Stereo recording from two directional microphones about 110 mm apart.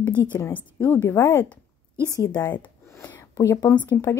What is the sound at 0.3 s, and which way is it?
Speech, 20° left (ahead or behind).